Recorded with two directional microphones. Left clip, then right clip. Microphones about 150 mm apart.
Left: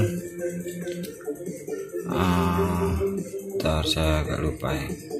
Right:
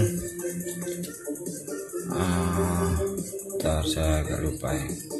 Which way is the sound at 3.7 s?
15° left (ahead or behind).